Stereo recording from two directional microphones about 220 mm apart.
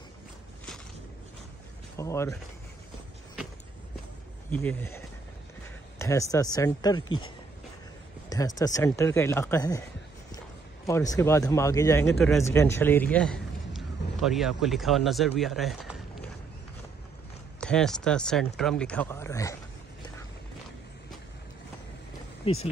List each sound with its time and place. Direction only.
2.0 s speech: 15° left (ahead or behind)
4.5 s speech: 10° left (ahead or behind)
8.3 s speech: 15° left (ahead or behind)
10.9 s a man's voice: 15° left (ahead or behind)
17.6 s speech: 5° left (ahead or behind)
22.5 s speech: 25° left (ahead or behind)